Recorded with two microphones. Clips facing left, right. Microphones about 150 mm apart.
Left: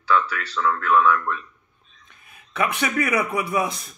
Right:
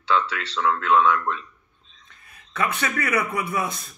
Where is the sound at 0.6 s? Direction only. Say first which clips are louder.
Even; 20° right (ahead or behind).